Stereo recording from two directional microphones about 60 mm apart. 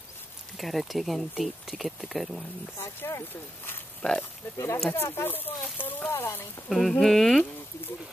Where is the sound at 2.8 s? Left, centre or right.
Left.